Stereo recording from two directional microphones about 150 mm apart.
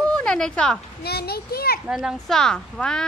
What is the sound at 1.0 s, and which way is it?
Speech, 90° left.